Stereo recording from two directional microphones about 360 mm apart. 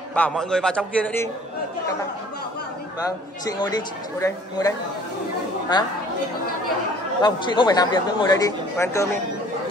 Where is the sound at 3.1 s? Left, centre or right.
Centre.